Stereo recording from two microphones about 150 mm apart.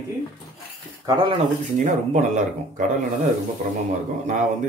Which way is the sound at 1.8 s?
55° right (ahead or behind).